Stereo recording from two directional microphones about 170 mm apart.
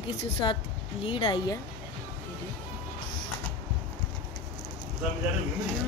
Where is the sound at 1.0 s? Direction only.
30° left (ahead or behind).